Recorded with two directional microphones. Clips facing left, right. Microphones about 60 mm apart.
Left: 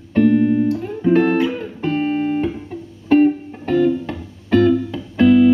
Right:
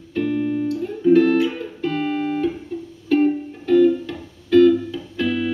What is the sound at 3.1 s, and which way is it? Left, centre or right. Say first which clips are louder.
Music: left 4 dB; left.